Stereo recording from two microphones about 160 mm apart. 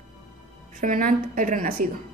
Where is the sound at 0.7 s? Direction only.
55° right (ahead or behind).